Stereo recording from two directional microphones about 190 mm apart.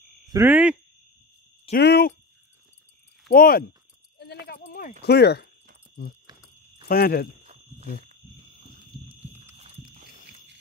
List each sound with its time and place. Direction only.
0.3 s speech: 10° right (ahead or behind)
1.7 s speech: 60° left (ahead or behind)
3.3 s speech: 50° left (ahead or behind)
4.2 s a sound: 60° left (ahead or behind)
5.0 s speech: 60° left (ahead or behind)
7.4 s cricket: 35° right (ahead or behind)
9.6 s a sound: 35° right (ahead or behind)